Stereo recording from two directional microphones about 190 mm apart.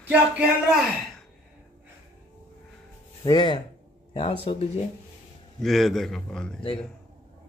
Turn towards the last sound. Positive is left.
turn(degrees=5)  # may be behind; listen again after turning